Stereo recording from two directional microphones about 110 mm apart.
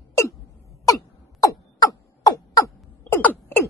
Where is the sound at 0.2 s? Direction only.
30° left (ahead or behind).